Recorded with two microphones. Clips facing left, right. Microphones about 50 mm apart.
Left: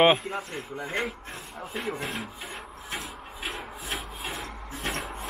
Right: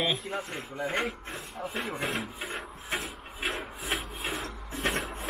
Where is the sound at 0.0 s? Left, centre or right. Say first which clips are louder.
Left 10 dB; left.